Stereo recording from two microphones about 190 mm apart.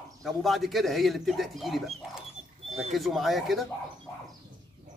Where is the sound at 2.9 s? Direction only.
Centre (ahead or behind).